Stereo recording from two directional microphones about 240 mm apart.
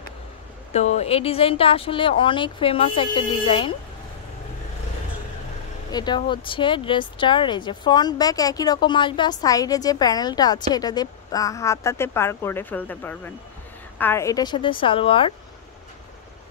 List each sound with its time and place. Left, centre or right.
0.7 s speech: left
5.9 s speech: centre